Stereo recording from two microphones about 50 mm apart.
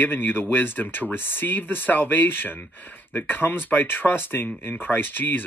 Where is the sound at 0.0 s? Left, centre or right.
Left.